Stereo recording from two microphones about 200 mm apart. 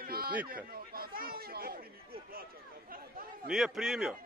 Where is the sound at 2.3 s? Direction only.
45° right (ahead or behind).